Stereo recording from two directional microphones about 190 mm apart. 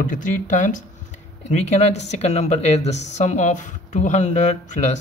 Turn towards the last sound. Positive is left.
turn(degrees=35)  # may be behind; listen again after turning